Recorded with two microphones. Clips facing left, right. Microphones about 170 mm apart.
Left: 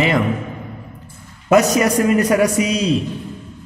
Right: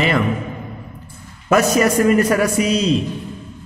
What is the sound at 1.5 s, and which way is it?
A man's voice, 20° left (ahead or behind).